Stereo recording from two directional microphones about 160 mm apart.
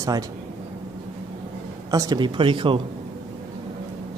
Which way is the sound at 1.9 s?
25° right (ahead or behind).